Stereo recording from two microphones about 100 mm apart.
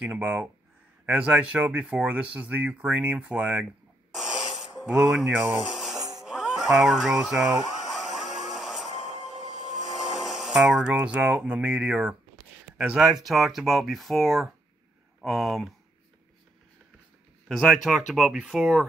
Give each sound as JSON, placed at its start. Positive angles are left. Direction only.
{"t": 0.0, "sound": "speech", "side_deg": -15}
{"t": 4.1, "sound": "snort", "side_deg": -5}
{"t": 4.6, "sound": "speech", "side_deg": -5}
{"t": 5.9, "sound": "music", "side_deg": -35}
{"t": 6.2, "sound": "a sound", "side_deg": -5}
{"t": 9.7, "sound": "speech", "side_deg": -5}
{"t": 17.5, "sound": "speech", "side_deg": 5}